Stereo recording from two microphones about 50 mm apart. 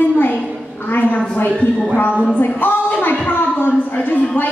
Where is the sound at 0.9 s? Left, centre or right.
Left.